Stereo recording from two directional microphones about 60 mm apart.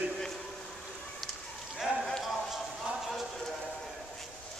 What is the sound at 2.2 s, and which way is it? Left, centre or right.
Clip-clop, centre.